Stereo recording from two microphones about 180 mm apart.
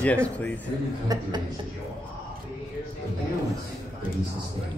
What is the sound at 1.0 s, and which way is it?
Speech, 20° right (ahead or behind).